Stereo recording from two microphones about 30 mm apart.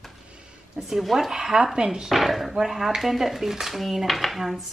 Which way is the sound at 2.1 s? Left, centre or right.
Centre.